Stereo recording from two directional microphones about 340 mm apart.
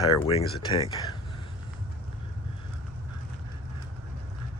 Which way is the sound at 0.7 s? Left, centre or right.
Centre.